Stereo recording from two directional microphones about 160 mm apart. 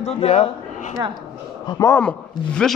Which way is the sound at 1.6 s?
30° left (ahead or behind).